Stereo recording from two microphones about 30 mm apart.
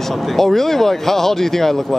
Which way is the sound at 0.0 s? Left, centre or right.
Centre.